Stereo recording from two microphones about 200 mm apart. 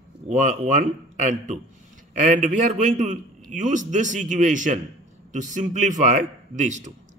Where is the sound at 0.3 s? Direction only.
40° right (ahead or behind).